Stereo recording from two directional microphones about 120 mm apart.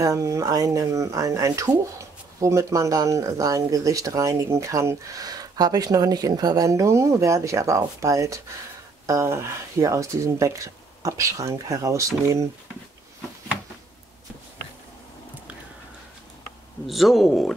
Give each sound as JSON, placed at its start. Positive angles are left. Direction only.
{"t": 0.0, "sound": "speech", "side_deg": -25}
{"t": 16.8, "sound": "speech", "side_deg": 0}